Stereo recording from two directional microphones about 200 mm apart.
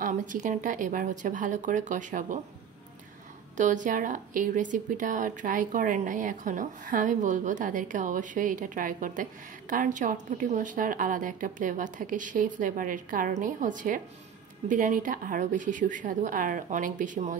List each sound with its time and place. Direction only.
0.0 s speech: 40° right (ahead or behind)
3.5 s speech: 40° right (ahead or behind)